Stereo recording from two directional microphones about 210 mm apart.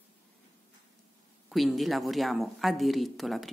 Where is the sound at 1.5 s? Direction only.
Centre (ahead or behind).